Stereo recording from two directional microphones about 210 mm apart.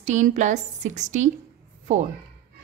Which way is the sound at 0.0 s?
35° right (ahead or behind).